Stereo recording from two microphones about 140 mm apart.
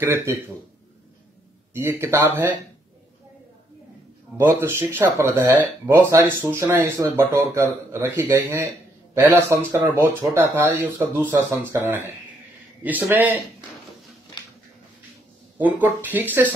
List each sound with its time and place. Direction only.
0.0 s a man's voice: 20° right (ahead or behind)
1.7 s speech: 15° right (ahead or behind)
4.4 s a man's voice: 15° right (ahead or behind)
15.5 s speech: 10° right (ahead or behind)